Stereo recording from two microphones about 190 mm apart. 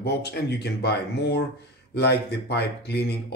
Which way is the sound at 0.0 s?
60° left (ahead or behind).